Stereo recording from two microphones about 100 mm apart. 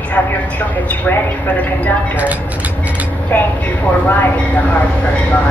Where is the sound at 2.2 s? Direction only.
15° right (ahead or behind).